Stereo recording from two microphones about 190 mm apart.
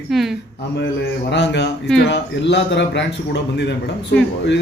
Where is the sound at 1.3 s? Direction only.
65° left (ahead or behind).